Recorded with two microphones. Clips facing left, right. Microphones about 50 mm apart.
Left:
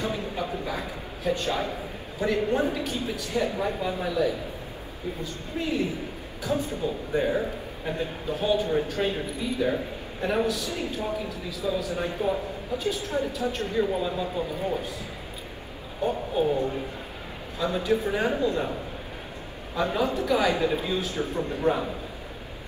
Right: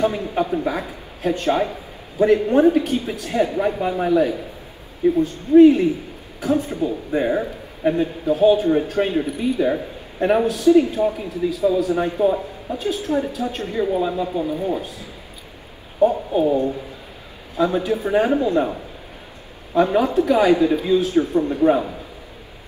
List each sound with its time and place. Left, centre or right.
0.0 s a man's voice: right
16.0 s speech: right
17.6 s a man's voice: right
19.7 s a man's voice: right